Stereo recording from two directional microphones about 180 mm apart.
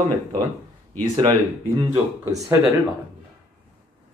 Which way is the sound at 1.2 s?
20° right (ahead or behind).